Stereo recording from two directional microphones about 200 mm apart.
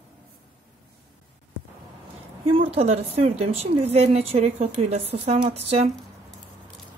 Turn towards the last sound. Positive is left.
turn(degrees=-30)  # may be behind; listen again after turning